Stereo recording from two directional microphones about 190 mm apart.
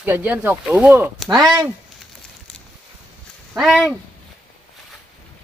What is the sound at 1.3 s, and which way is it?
Speech, 20° right (ahead or behind).